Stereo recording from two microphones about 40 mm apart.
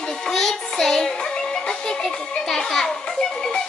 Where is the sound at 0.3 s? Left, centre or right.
Centre.